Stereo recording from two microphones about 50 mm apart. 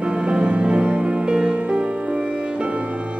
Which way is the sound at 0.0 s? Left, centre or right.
Centre.